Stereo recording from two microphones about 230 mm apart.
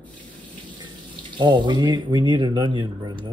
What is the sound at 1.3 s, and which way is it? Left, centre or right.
Speech, centre.